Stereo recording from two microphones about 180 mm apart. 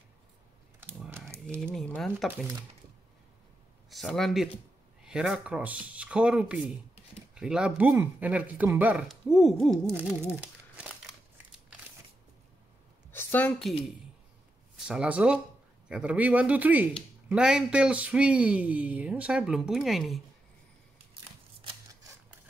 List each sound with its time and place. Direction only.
0.7 s typing: 10° right (ahead or behind)
1.6 s speech: centre (ahead or behind)
2.3 s speech: 15° right (ahead or behind)
3.9 s speech: centre (ahead or behind)
9.8 s speech: 10° right (ahead or behind)
13.1 s a woman's voice: 10° left (ahead or behind)